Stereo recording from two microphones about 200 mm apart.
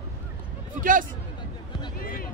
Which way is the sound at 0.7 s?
40° right (ahead or behind).